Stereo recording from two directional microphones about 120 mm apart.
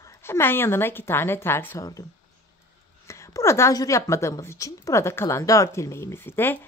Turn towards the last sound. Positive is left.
turn(degrees=20)  # may be behind; listen again after turning